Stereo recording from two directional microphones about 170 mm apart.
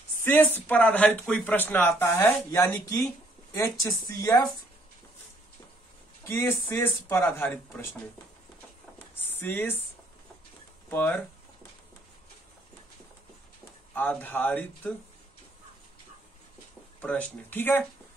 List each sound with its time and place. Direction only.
0.2 s speech: 10° left (ahead or behind)
6.2 s speech: 15° left (ahead or behind)
9.1 s a sound: 10° left (ahead or behind)
10.9 s speech: 10° left (ahead or behind)
13.9 s speech: 10° left (ahead or behind)
17.0 s speech: 10° left (ahead or behind)